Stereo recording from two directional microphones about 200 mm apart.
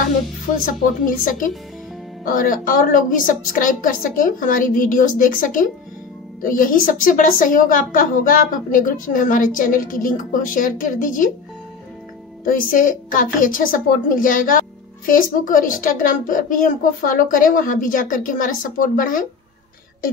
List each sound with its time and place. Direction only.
1.0 s a woman's voice: 40° left (ahead or behind)
12.4 s a woman's voice: 40° left (ahead or behind)